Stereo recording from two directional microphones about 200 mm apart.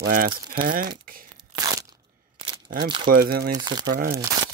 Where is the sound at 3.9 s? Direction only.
50° right (ahead or behind).